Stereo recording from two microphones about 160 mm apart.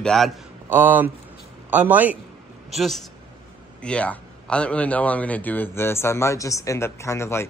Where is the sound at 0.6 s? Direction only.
10° right (ahead or behind).